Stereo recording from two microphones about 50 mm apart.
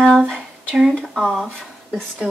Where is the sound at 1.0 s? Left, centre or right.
Centre.